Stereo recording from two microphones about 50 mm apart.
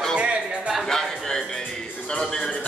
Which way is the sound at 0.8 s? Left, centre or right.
Centre.